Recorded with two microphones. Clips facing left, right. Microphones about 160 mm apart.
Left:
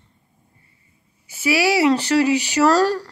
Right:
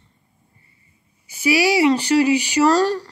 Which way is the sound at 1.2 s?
Centre (ahead or behind).